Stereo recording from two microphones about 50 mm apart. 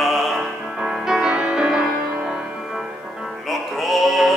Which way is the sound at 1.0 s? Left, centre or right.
Centre.